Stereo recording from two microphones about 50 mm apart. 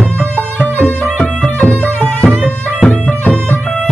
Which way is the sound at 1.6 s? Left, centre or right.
Left.